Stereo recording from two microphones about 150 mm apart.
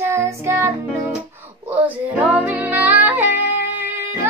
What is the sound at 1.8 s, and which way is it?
Music, 10° right (ahead or behind).